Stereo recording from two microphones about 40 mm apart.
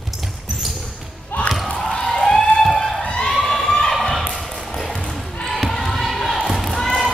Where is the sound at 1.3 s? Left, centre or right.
Left.